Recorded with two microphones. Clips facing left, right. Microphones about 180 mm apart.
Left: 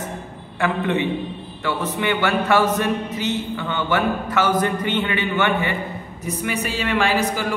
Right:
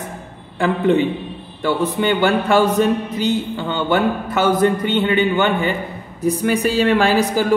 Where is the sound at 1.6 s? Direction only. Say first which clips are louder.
Right 6 dB; 30° right (ahead or behind).